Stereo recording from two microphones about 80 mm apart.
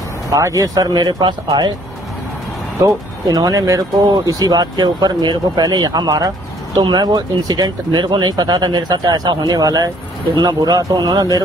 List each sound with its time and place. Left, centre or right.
0.3 s speech: right
2.8 s speech: right
6.9 s speech: right